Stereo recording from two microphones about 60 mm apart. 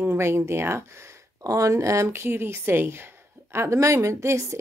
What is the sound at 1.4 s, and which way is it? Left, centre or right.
A woman's voice, right.